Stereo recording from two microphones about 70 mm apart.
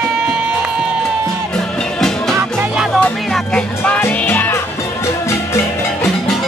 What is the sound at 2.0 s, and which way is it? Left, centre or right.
Music, centre.